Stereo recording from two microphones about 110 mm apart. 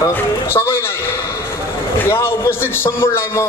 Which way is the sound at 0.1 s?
20° left (ahead or behind).